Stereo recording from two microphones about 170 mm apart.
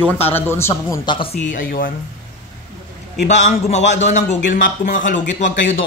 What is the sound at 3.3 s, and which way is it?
Speech, 40° left (ahead or behind).